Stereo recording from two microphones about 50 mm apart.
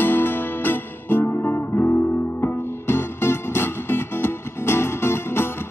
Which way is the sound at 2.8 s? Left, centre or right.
Left.